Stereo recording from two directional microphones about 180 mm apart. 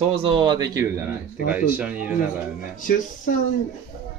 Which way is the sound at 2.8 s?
45° left (ahead or behind).